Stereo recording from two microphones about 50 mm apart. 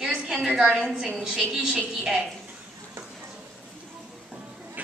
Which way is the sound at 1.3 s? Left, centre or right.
Centre.